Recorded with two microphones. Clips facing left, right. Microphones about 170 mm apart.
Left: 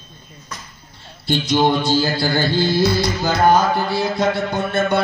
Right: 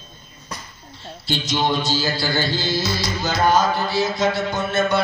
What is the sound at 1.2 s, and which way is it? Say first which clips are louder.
Music: left 5 dB; 55° left (ahead or behind).